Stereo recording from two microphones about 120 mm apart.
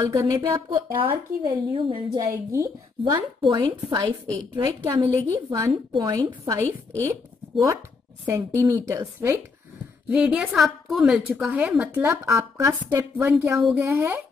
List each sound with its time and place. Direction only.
0.0 s a woman's voice: 30° right (ahead or behind)
1.0 s speech: 45° right (ahead or behind)
2.1 s a woman's voice: 25° right (ahead or behind)
3.1 s a woman's voice: 40° right (ahead or behind)
8.3 s a woman's voice: 25° right (ahead or behind)
10.0 s a woman's voice: 10° right (ahead or behind)